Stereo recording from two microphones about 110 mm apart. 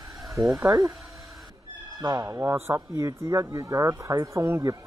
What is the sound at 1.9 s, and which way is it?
Speech, 35° right (ahead or behind).